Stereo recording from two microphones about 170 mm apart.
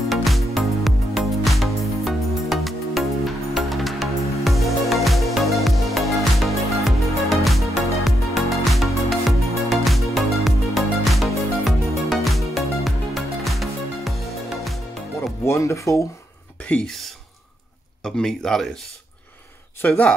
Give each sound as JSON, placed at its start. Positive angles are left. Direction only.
{"t": 0.1, "sound": "music", "side_deg": 0}
{"t": 15.4, "sound": "a sound", "side_deg": 15}
{"t": 16.5, "sound": "speech", "side_deg": 5}
{"t": 19.8, "sound": "speech", "side_deg": 5}